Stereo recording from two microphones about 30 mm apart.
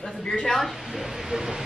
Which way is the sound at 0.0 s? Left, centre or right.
Left.